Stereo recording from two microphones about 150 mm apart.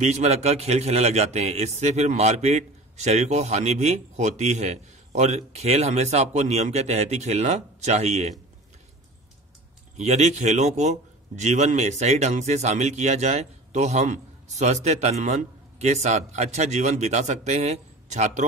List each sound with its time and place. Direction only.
0.0 s a man's voice: 50° right (ahead or behind)
9.9 s a man's voice: 50° right (ahead or behind)